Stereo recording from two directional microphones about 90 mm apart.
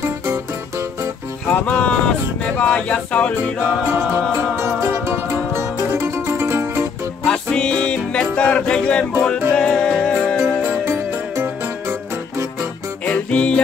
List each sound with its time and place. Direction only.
1.5 s a sound: 15° left (ahead or behind)
4.8 s music: 25° right (ahead or behind)
7.5 s music: 10° left (ahead or behind)
10.7 s music: 30° right (ahead or behind)
13.0 s music: 15° left (ahead or behind)